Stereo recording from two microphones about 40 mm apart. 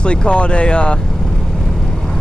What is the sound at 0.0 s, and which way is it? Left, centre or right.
Speech, left.